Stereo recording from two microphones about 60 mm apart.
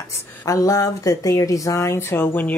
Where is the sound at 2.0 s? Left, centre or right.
Left.